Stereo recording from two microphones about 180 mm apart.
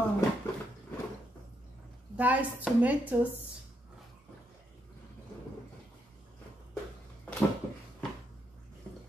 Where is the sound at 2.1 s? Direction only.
10° right (ahead or behind).